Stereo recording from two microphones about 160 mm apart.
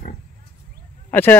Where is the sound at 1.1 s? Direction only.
10° left (ahead or behind).